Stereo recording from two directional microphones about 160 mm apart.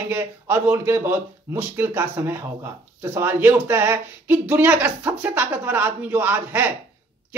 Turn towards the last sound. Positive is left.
turn(degrees=-10)  # may be behind; listen again after turning